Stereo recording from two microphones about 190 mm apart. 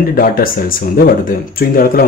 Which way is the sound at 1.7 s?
50° left (ahead or behind).